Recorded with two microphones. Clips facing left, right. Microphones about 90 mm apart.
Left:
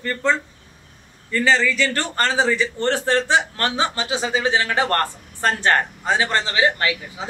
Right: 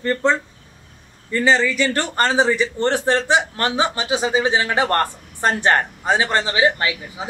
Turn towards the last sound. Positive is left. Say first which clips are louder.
# even
turn(degrees=-20)  # may be behind; listen again after turning